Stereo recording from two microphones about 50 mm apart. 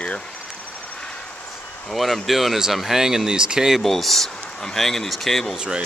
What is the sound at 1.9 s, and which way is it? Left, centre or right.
Speech, centre.